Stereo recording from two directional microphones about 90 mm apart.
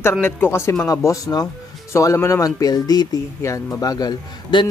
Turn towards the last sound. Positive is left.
turn(degrees=45)  # may be behind; listen again after turning